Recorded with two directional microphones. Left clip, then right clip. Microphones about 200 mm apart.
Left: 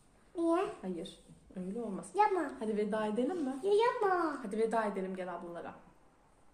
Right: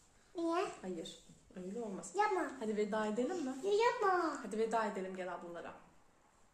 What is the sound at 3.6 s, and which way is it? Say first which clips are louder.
Speech: left 3 dB; centre (ahead or behind).